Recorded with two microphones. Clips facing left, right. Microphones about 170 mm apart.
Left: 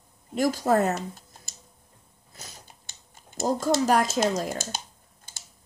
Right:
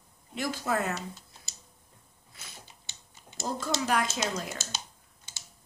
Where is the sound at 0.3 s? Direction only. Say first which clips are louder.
Left 8 dB; 40° left (ahead or behind).